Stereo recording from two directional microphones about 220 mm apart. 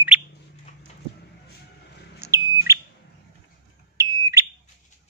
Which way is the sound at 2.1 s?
10° right (ahead or behind).